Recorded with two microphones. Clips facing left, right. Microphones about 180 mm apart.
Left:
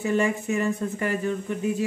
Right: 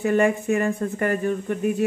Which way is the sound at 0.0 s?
55° right (ahead or behind).